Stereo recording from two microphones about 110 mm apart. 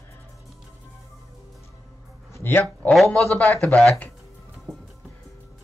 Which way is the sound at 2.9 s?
5° left (ahead or behind).